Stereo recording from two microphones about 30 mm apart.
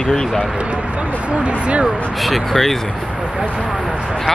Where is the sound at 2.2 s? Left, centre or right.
Centre.